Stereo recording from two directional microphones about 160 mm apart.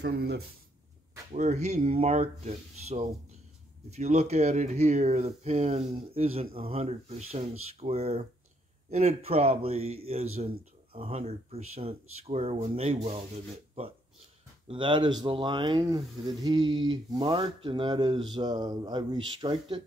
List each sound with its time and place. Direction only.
0.0 s speech: 85° right
1.3 s a man's voice: 50° right (ahead or behind); by 19.8 s 30° right (ahead or behind)